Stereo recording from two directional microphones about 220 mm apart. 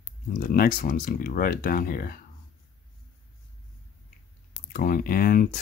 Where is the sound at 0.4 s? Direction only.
40° left (ahead or behind).